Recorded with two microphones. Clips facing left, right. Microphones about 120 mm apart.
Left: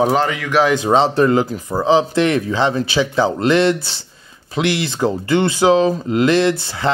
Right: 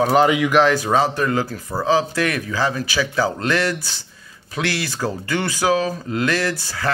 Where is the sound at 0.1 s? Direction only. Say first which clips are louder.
Right 2 dB; 10° right (ahead or behind).